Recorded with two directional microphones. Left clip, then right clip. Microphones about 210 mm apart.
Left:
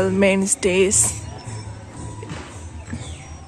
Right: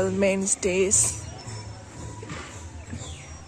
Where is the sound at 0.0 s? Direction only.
Centre (ahead or behind).